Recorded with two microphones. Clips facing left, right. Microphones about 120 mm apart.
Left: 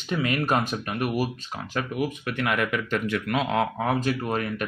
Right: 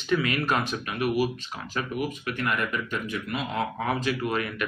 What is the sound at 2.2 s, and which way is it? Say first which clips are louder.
Speech: left 2 dB; 70° left (ahead or behind).